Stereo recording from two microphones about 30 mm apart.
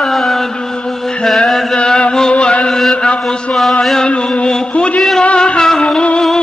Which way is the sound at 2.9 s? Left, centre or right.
Left.